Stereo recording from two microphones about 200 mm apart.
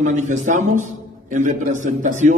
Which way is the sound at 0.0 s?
35° right (ahead or behind).